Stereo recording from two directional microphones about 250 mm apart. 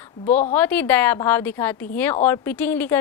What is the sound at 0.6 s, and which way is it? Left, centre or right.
A woman's voice, centre.